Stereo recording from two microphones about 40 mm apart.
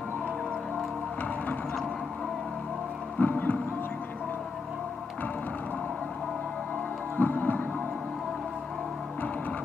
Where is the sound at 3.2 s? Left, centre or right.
Left.